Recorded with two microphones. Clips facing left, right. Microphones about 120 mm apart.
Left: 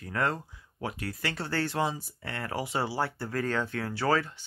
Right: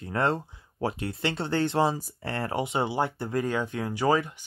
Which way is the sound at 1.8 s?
40° right (ahead or behind).